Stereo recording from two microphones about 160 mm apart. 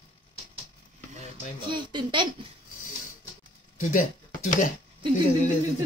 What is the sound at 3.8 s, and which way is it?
Speech, 55° left (ahead or behind).